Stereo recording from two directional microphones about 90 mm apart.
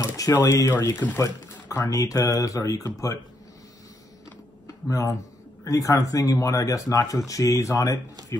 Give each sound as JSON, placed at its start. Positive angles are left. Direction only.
{"t": 0.0, "sound": "speech", "side_deg": 40}
{"t": 4.8, "sound": "speech", "side_deg": 35}